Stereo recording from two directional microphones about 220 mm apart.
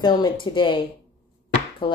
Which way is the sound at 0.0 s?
20° left (ahead or behind).